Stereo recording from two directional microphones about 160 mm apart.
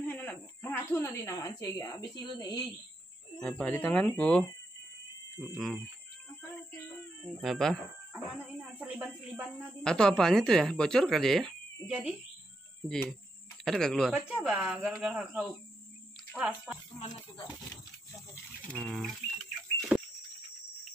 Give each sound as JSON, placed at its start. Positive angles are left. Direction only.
{"t": 0.0, "sound": "speech", "side_deg": 10}
{"t": 3.3, "sound": "speech", "side_deg": 10}
{"t": 5.5, "sound": "speech", "side_deg": 0}
{"t": 7.4, "sound": "speech", "side_deg": 0}
{"t": 9.8, "sound": "speech", "side_deg": 5}
{"t": 14.1, "sound": "speech", "side_deg": -5}
{"t": 18.3, "sound": "livestock", "side_deg": 5}